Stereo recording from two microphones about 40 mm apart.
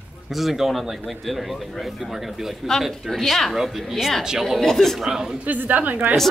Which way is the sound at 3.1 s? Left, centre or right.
Centre.